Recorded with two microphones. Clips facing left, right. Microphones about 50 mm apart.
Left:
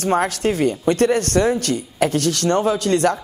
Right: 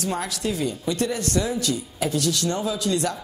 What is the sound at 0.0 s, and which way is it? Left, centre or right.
Speech, left.